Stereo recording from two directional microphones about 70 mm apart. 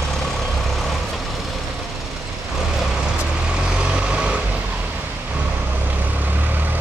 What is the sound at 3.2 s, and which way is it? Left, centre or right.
Vehicle, centre.